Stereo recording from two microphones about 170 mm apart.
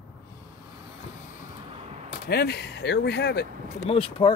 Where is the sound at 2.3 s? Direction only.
70° left (ahead or behind).